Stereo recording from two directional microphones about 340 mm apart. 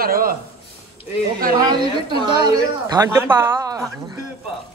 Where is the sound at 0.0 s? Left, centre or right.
Right.